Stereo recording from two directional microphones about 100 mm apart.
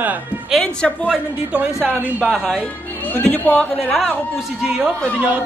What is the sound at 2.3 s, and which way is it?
Music, 5° left (ahead or behind).